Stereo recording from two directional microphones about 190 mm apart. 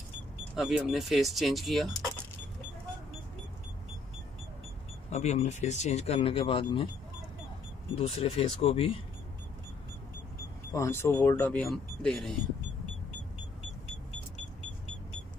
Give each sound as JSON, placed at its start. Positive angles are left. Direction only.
{"t": 0.6, "sound": "speech", "side_deg": -5}
{"t": 5.1, "sound": "speech", "side_deg": 35}
{"t": 8.0, "sound": "speech", "side_deg": 30}
{"t": 10.7, "sound": "speech", "side_deg": 15}